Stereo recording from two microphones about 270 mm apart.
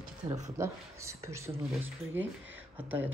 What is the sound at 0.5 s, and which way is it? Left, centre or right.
Speech, centre.